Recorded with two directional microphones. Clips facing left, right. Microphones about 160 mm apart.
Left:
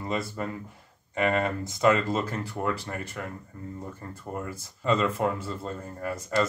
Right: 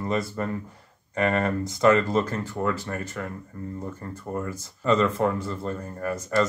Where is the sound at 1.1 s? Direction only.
20° left (ahead or behind).